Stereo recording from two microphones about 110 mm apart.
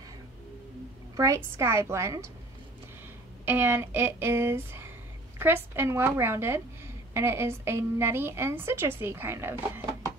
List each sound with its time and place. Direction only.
1.1 s a woman's voice: 30° right (ahead or behind)
3.4 s a woman's voice: 20° right (ahead or behind)